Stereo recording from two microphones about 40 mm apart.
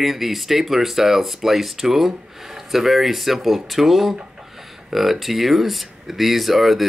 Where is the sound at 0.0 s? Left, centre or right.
Centre.